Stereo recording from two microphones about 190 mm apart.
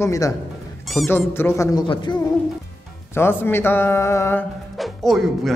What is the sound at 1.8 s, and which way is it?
Speech, 25° left (ahead or behind).